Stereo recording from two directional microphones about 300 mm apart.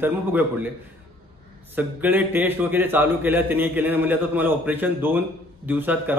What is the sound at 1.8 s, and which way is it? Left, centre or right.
A man's voice, centre.